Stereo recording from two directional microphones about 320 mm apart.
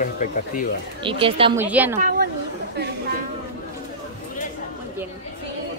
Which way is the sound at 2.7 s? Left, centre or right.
Right.